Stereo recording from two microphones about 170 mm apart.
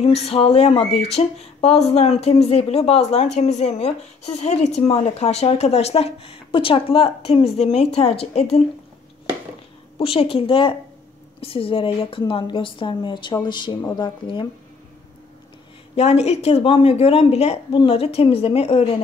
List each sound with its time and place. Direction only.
0.0 s a woman's voice: 35° left (ahead or behind)
9.9 s a woman's voice: 30° left (ahead or behind)
13.7 s a woman's voice: 15° left (ahead or behind)
14.0 s speech: 25° left (ahead or behind)
16.0 s a woman's voice: 40° left (ahead or behind)